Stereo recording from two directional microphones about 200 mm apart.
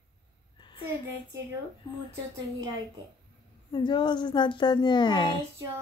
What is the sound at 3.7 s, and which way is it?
A woman's voice, 20° left (ahead or behind).